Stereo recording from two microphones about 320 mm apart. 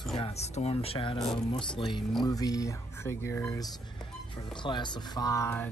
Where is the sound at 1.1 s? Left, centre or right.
Centre.